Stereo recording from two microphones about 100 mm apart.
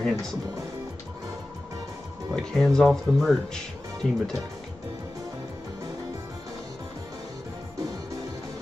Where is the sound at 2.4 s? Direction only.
5° left (ahead or behind).